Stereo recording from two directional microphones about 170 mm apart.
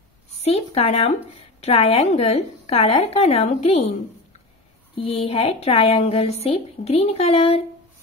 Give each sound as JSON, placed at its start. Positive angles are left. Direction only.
{"t": 0.4, "sound": "a woman's voice", "side_deg": 35}
{"t": 4.9, "sound": "a woman's voice", "side_deg": 35}